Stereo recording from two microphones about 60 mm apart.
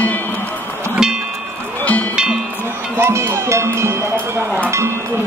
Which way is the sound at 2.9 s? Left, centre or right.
Right.